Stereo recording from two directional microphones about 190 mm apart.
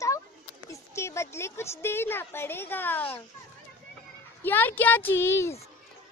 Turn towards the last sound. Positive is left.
turn(degrees=15)  # may be behind; listen again after turning